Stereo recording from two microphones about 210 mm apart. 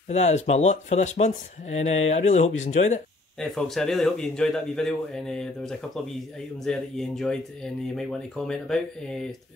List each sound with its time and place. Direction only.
0.1 s speech: 35° left (ahead or behind)
3.3 s speech: centre (ahead or behind)